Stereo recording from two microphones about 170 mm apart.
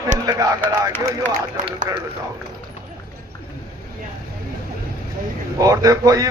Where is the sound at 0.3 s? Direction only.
20° right (ahead or behind).